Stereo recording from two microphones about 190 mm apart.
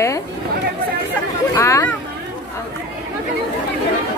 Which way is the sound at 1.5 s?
15° left (ahead or behind).